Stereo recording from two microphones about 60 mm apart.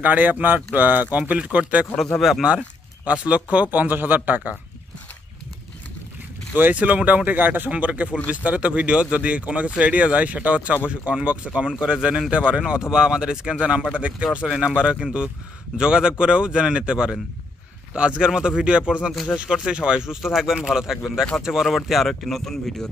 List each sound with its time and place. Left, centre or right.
0.0 s speech: right
2.1 s speech: centre
3.1 s speech: right
6.5 s speech: right; by 22.8 s centre